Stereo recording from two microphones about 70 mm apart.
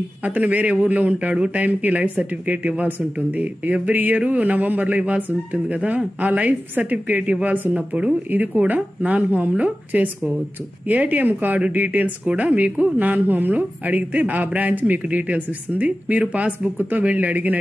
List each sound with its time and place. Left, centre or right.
0.2 s a woman's voice: right